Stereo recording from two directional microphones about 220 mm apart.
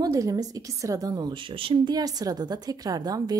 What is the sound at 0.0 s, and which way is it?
A woman's voice, 15° right (ahead or behind).